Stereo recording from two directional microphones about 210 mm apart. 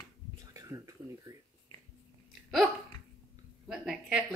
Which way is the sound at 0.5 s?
15° right (ahead or behind).